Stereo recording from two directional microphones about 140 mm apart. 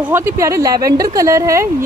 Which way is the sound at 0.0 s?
15° right (ahead or behind).